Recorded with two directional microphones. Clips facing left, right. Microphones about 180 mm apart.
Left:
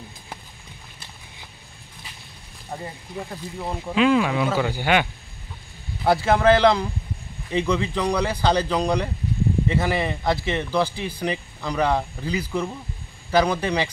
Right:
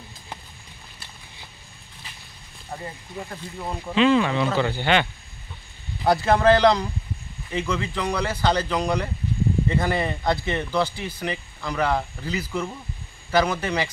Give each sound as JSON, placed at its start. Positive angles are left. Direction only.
{"t": 2.7, "sound": "speech", "side_deg": 20}
{"t": 3.2, "sound": "speech", "side_deg": 10}
{"t": 6.0, "sound": "speech", "side_deg": 5}